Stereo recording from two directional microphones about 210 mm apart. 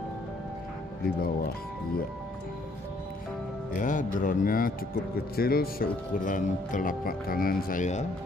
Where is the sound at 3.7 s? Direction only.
40° left (ahead or behind).